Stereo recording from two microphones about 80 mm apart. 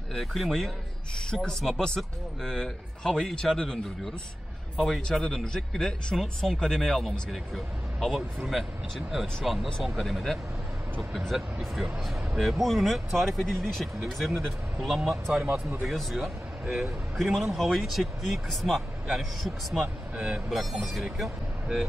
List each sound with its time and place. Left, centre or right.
0.1 s speech: centre
15.3 s speech: centre
15.8 s speech: centre
19.8 s speech: centre
20.4 s speech: centre